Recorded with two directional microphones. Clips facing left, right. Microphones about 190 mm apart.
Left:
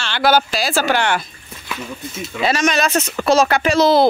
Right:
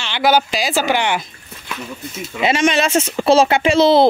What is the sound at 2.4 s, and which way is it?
Speech, 25° right (ahead or behind).